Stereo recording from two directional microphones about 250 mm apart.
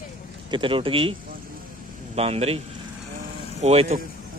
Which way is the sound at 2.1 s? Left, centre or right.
Right.